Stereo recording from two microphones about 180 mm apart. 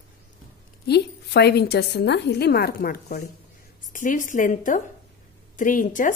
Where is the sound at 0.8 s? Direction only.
65° left (ahead or behind).